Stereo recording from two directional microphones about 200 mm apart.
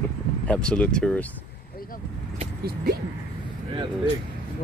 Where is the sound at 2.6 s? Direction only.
50° right (ahead or behind).